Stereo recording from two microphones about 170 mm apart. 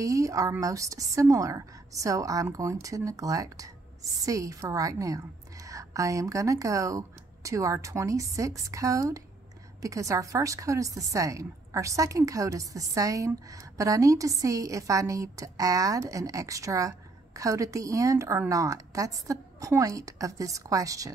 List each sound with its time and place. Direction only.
0.0 s a woman's voice: 20° right (ahead or behind)